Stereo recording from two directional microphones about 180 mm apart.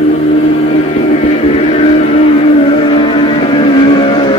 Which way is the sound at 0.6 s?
35° left (ahead or behind).